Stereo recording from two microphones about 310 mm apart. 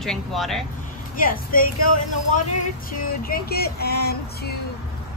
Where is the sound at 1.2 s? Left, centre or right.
Left.